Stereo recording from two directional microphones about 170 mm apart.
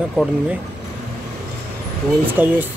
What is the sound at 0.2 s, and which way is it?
Speech, 5° right (ahead or behind).